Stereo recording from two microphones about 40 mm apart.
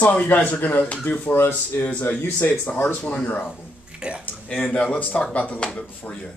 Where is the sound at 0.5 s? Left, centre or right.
Left.